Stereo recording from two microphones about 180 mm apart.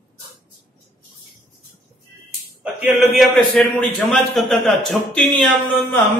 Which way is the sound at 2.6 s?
5° right (ahead or behind).